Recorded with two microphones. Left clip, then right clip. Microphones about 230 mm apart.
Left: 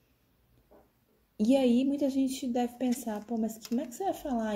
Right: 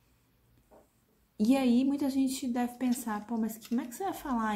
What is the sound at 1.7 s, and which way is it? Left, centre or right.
A woman's voice, centre.